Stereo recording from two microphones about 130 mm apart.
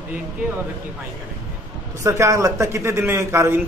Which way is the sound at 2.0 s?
25° right (ahead or behind).